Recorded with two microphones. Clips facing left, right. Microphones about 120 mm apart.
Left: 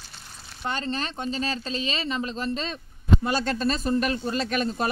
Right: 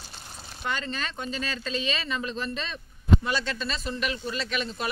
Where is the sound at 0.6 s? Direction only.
35° left (ahead or behind).